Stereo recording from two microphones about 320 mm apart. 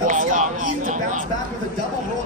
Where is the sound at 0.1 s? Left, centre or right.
Right.